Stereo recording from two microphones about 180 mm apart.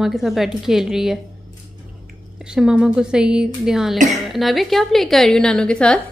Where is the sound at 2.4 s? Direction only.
5° right (ahead or behind).